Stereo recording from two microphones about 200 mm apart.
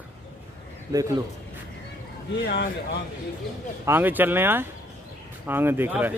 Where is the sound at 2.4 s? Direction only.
55° left (ahead or behind).